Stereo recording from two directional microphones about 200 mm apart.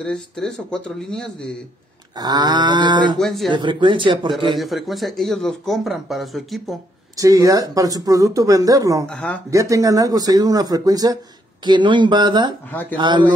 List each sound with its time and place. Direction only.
0.0 s speech: 5° left (ahead or behind)
2.1 s a sound: 20° right (ahead or behind)
3.2 s speech: centre (ahead or behind)
3.5 s a sound: 25° right (ahead or behind)
4.6 s speech: centre (ahead or behind)
7.2 s speech: 15° right (ahead or behind)
9.1 s speech: 5° left (ahead or behind)
9.5 s speech: 15° right (ahead or behind)
11.6 s a sound: 25° right (ahead or behind)